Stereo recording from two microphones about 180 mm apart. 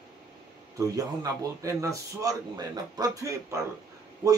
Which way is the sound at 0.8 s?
20° right (ahead or behind).